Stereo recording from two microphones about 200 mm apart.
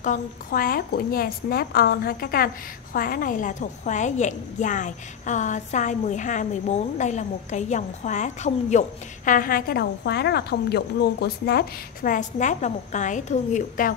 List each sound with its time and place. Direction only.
0.0 s a woman's voice: 40° left (ahead or behind)